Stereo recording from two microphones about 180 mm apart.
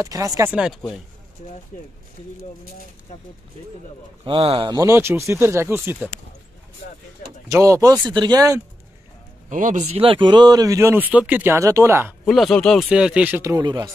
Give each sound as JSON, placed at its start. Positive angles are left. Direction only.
{"t": 0.0, "sound": "speech", "side_deg": -20}
{"t": 0.5, "sound": "speech", "side_deg": -5}
{"t": 1.7, "sound": "speech", "side_deg": 45}
{"t": 4.2, "sound": "speech", "side_deg": -30}
{"t": 7.4, "sound": "speech", "side_deg": -20}
{"t": 9.5, "sound": "speech", "side_deg": -45}
{"t": 12.3, "sound": "speech", "side_deg": 5}